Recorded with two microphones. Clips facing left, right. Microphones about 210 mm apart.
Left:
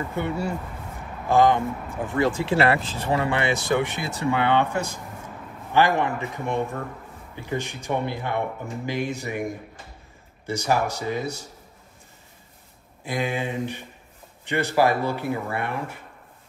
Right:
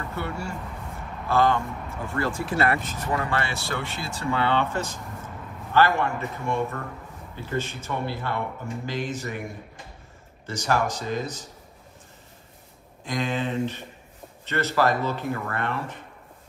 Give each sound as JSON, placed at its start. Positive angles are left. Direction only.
{"t": 0.0, "sound": "speech", "side_deg": 15}
{"t": 2.4, "sound": "speech", "side_deg": 30}
{"t": 10.4, "sound": "speech", "side_deg": 10}
{"t": 13.0, "sound": "speech", "side_deg": 10}